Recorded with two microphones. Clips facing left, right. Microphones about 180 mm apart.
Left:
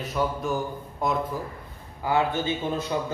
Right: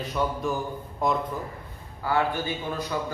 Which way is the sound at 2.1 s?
20° left (ahead or behind).